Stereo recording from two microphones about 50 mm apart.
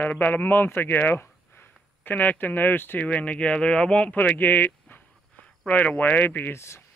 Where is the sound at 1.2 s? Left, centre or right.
Left.